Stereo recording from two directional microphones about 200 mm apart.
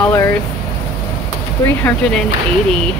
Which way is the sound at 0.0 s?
10° left (ahead or behind).